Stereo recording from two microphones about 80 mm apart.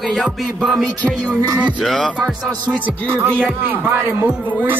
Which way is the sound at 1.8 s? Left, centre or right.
Centre.